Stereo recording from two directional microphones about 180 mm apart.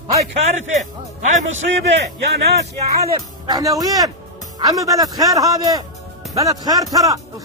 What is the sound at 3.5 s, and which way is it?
Speech, 20° right (ahead or behind).